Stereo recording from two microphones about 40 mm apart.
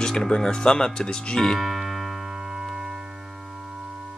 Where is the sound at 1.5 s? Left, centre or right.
Centre.